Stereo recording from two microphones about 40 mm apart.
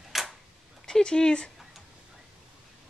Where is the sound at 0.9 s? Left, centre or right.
Centre.